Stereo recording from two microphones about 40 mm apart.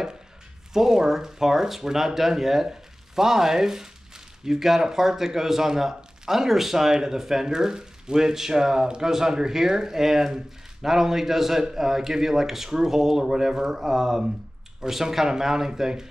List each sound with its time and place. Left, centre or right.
0.7 s speech: centre